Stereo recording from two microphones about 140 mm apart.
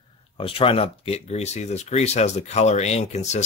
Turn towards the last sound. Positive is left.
turn(degrees=55)  # may be behind; listen again after turning